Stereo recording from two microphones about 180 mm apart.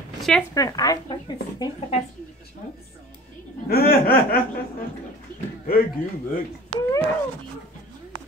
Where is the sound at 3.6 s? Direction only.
55° left (ahead or behind).